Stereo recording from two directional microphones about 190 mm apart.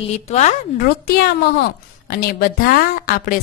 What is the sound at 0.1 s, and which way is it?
Speech, 35° left (ahead or behind).